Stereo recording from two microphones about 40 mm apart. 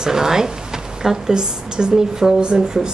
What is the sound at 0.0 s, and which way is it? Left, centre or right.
A woman's voice, centre.